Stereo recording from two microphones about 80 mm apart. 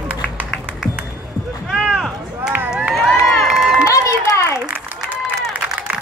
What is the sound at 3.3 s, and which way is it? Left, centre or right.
Run, centre.